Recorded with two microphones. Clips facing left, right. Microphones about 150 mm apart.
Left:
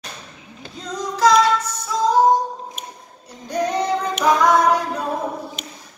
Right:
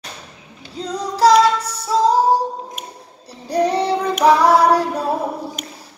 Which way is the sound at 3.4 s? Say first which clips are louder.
Right 3 dB; 35° right (ahead or behind).